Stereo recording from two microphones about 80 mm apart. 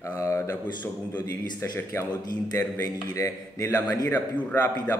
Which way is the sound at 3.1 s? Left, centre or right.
Left.